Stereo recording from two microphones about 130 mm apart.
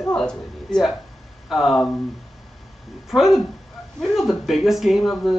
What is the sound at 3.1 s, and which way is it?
Speech, centre (ahead or behind).